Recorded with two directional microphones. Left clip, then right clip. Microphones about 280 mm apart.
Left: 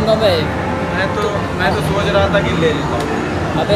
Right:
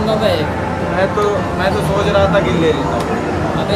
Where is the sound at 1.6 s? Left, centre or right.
Centre.